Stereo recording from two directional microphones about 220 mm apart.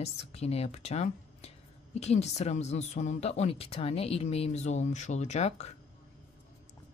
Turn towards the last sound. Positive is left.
turn(degrees=30)  # may be behind; listen again after turning